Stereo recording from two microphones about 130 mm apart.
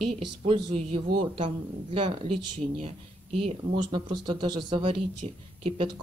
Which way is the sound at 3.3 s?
50° right (ahead or behind).